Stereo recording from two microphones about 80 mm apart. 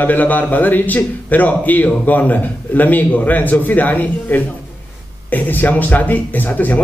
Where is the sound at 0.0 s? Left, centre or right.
Left.